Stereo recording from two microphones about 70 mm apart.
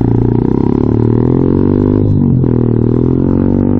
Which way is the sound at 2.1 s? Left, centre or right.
Right.